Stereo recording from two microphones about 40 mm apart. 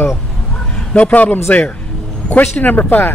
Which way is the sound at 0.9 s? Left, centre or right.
Left.